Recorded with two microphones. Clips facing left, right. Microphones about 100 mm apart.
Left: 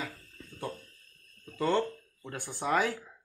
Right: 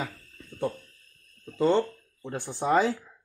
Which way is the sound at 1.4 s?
20° right (ahead or behind).